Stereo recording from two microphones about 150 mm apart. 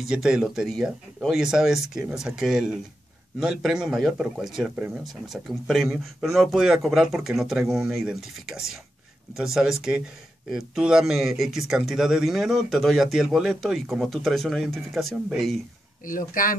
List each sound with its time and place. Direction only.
0.0 s a man's voice: 5° right (ahead or behind)
16.1 s speech: 65° left (ahead or behind)